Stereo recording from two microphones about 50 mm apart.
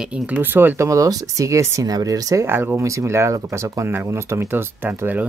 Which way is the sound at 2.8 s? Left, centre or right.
Right.